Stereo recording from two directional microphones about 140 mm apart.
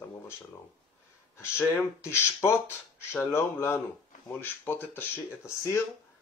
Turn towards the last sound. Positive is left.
turn(degrees=20)  # may be behind; listen again after turning